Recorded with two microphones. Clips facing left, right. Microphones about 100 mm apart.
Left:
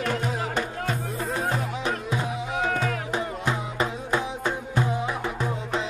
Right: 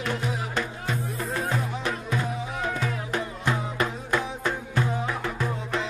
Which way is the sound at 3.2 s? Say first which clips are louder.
Right 2 dB; 25° left (ahead or behind).